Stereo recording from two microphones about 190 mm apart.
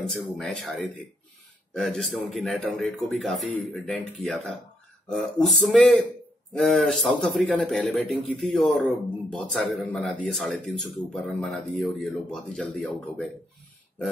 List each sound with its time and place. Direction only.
0.0 s speech: 5° left (ahead or behind)